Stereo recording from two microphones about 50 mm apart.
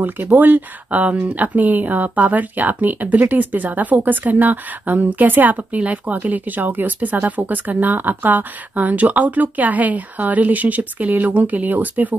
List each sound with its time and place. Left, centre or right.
0.4 s speech: right